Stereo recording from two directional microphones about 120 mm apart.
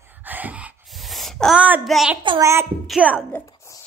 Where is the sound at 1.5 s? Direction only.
15° right (ahead or behind).